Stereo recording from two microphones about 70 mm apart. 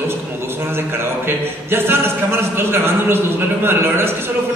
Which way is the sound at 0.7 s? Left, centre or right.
Right.